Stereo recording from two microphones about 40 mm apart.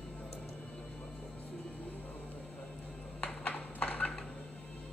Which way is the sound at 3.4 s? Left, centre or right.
Left.